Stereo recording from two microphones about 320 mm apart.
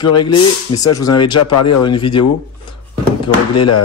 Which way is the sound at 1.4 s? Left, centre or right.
Left.